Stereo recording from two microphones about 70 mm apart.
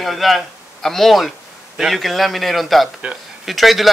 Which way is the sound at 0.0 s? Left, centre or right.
Centre.